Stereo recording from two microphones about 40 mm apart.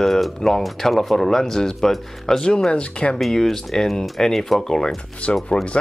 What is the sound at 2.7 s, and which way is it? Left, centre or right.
Speech, left.